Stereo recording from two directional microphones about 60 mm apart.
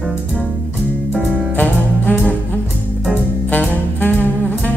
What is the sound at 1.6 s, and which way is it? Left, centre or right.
Music, left.